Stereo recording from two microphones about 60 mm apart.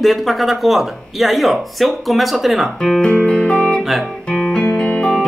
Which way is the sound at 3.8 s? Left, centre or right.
Centre.